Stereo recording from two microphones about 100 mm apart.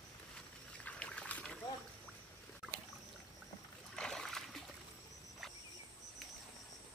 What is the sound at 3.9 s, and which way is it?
Rowboat, 5° left (ahead or behind).